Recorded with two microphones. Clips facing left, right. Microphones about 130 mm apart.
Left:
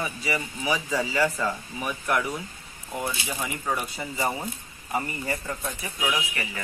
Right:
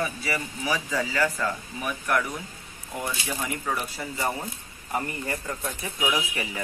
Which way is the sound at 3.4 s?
10° left (ahead or behind).